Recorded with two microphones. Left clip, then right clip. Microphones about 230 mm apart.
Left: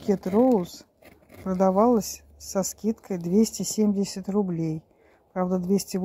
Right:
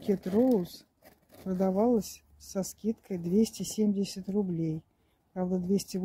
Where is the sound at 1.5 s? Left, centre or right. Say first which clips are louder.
Left 7 dB; centre.